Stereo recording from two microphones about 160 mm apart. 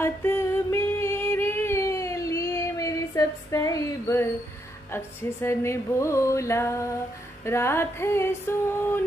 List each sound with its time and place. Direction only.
0.0 s music: 15° left (ahead or behind)
4.9 s speech: 15° left (ahead or behind)